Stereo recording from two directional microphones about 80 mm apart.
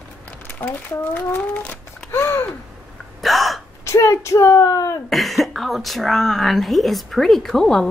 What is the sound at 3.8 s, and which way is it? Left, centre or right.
Speech, left.